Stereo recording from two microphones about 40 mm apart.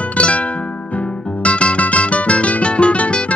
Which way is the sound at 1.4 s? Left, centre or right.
Left.